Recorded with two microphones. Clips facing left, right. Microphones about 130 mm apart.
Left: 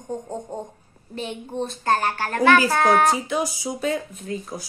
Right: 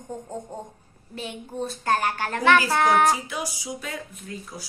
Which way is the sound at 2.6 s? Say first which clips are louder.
Left 2 dB; 15° left (ahead or behind).